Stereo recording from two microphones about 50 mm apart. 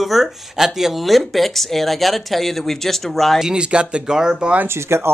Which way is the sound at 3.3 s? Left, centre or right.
Centre.